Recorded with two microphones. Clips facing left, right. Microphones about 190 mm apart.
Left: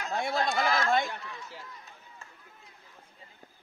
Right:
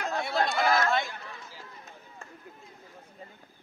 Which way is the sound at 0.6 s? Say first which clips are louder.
Right 4 dB; 50° right (ahead or behind).